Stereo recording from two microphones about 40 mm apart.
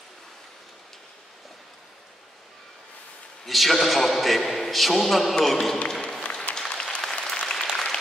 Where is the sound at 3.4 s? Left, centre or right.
Centre.